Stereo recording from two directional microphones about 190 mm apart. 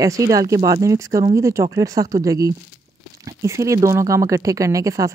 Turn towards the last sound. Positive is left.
turn(degrees=-15)  # may be behind; listen again after turning